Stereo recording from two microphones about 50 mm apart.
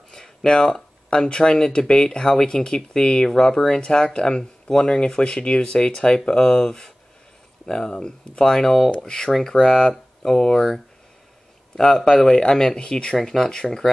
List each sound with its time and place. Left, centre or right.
0.1 s speech: centre
13.6 s speech: centre